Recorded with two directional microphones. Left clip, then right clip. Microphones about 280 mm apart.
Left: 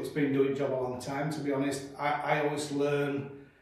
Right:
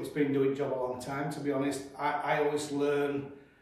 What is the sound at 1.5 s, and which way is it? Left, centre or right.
A man's voice, centre.